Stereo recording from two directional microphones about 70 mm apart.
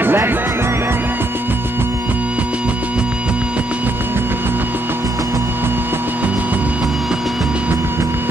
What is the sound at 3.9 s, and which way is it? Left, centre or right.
Music, right.